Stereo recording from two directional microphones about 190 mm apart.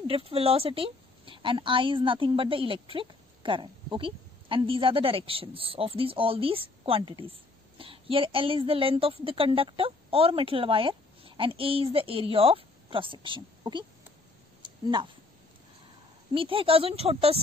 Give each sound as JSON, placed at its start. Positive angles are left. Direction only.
{"t": 0.0, "sound": "a woman's voice", "side_deg": -30}
{"t": 14.6, "sound": "a sound", "side_deg": -25}
{"t": 16.3, "sound": "a woman's voice", "side_deg": -30}